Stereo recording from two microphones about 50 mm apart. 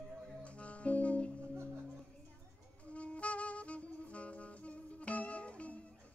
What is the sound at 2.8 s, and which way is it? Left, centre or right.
Saxophone, left.